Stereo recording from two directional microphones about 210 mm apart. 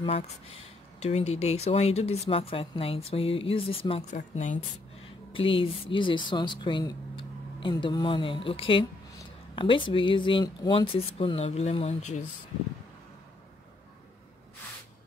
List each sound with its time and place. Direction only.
0.9 s speech: 30° left (ahead or behind)
5.3 s speech: 25° left (ahead or behind)